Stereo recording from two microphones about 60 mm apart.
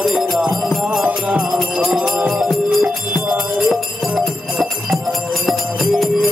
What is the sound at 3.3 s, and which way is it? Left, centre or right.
Jingle bell, centre.